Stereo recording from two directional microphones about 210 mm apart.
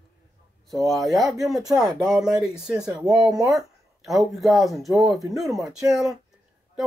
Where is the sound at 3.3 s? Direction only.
15° right (ahead or behind).